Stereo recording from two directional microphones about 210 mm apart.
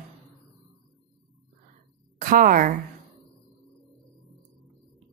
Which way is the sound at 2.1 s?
40° right (ahead or behind).